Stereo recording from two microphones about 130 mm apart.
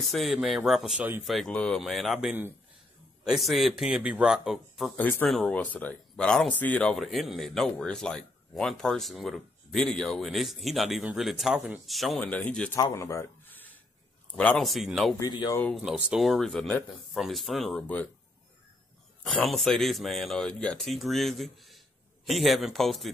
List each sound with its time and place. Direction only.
0.0 s speech: centre (ahead or behind)
4.9 s speech: 10° left (ahead or behind)
12.2 s speech: 10° left (ahead or behind)
12.7 s speech: 25° left (ahead or behind); by 15.1 s centre (ahead or behind)
15.1 s speech: 30° left (ahead or behind)
15.7 s speech: centre (ahead or behind)
19.2 s speech: centre (ahead or behind)